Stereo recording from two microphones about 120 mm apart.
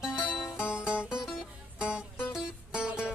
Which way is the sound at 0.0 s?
5° right (ahead or behind).